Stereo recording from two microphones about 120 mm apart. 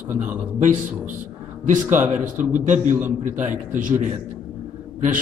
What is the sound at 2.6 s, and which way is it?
A man's voice, 90° right.